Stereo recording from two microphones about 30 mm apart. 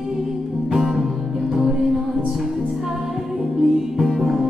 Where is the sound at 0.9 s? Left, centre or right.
Centre.